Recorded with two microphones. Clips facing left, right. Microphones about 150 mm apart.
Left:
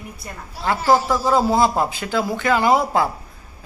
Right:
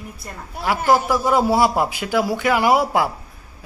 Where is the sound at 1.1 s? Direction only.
10° right (ahead or behind).